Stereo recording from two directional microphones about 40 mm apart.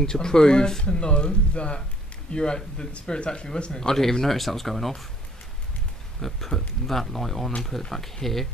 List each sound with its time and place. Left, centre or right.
0.0 s speech: centre
3.9 s speech: centre
6.2 s speech: centre